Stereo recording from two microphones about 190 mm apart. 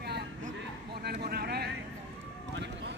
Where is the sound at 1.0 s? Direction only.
55° right (ahead or behind).